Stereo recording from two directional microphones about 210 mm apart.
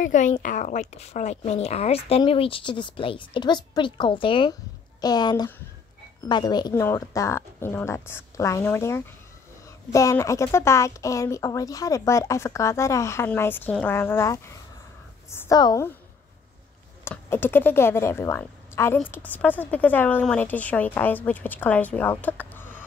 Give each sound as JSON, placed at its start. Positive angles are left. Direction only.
{"t": 0.0, "sound": "speech", "side_deg": 35}
{"t": 17.0, "sound": "speech", "side_deg": 10}